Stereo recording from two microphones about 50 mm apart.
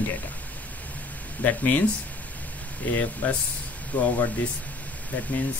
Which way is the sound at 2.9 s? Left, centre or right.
Left.